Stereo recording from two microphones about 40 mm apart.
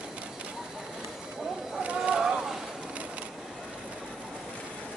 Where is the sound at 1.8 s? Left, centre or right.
Right.